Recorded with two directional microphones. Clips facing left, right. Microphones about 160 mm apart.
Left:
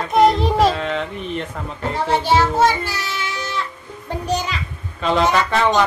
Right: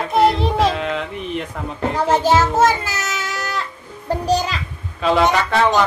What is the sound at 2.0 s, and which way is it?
Child singing, 45° right (ahead or behind).